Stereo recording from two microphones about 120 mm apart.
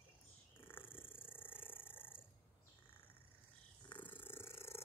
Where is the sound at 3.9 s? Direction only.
15° left (ahead or behind).